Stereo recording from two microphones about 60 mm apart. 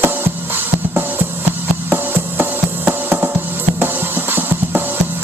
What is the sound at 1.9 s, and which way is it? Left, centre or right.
Music, right.